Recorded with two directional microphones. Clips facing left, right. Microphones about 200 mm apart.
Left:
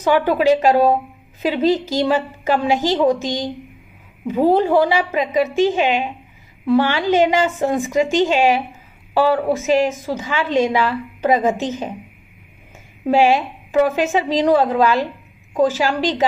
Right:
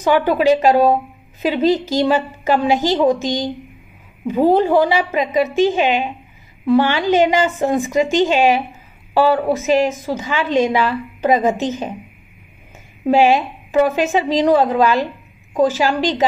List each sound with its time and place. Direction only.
0.0 s a woman's voice: 20° right (ahead or behind)
4.5 s a woman's voice: 20° right (ahead or behind)
13.1 s a woman's voice: 20° right (ahead or behind)